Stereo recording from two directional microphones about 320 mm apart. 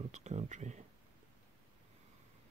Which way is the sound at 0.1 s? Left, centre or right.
Right.